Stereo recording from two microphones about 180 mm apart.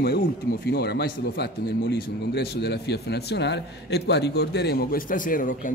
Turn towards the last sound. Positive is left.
turn(degrees=50)  # may be behind; listen again after turning